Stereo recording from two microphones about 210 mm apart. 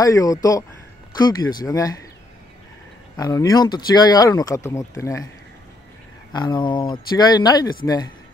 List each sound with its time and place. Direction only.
0.0 s speech: 15° left (ahead or behind)
3.2 s speech: 15° left (ahead or behind)
6.3 s speech: 20° left (ahead or behind)